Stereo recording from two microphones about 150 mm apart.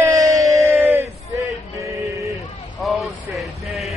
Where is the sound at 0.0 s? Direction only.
20° right (ahead or behind).